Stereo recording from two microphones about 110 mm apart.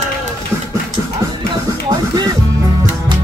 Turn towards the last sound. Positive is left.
turn(degrees=-35)  # may be behind; listen again after turning